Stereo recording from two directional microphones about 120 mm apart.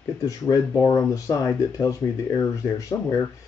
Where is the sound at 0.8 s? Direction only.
25° left (ahead or behind).